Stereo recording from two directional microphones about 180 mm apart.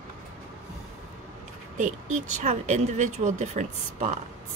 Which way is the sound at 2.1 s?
40° right (ahead or behind).